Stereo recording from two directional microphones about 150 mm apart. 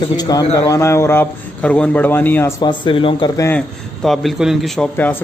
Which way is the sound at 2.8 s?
35° left (ahead or behind).